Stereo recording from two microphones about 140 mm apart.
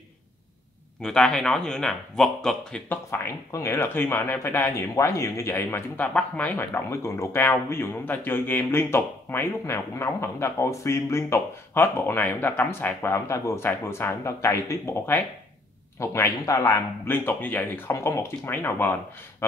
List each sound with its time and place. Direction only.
1.0 s speech: 5° left (ahead or behind)
2.9 s speech: 20° left (ahead or behind)